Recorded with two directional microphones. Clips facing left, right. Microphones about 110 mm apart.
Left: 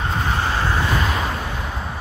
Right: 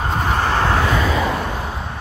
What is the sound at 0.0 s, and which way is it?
Vehicle, 45° right (ahead or behind).